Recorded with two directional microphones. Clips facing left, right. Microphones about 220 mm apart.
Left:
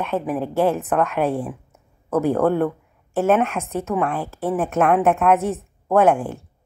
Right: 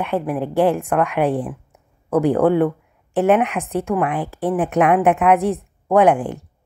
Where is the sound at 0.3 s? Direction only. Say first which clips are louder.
Right 2 dB; 15° right (ahead or behind).